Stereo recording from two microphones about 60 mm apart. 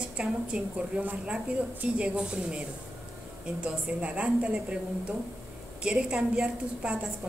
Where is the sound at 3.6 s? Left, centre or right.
Centre.